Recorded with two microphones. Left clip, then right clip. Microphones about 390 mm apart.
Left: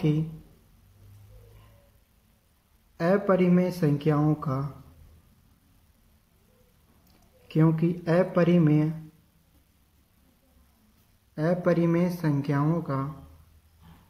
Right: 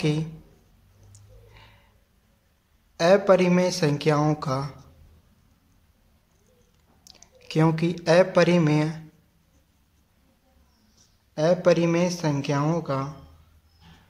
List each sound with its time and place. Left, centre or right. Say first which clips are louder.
3.0 s speech: right 6 dB; centre
7.4 s speech: right 2 dB; centre
11.3 s speech: right 5 dB; centre